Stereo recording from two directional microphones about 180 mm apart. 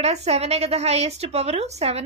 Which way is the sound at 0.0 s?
35° right (ahead or behind).